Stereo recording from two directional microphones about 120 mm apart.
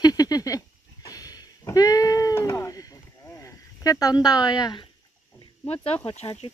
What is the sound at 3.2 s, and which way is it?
Speech, 20° left (ahead or behind).